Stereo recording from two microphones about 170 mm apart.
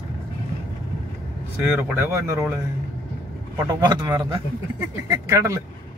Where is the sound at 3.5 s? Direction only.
25° right (ahead or behind).